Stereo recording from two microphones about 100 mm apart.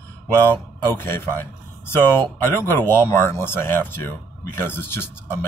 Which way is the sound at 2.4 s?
25° left (ahead or behind).